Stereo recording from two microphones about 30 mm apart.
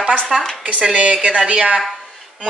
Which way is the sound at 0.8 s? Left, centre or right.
Right.